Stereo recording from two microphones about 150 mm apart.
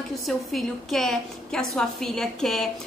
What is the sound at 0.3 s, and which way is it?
A woman's voice, centre (ahead or behind).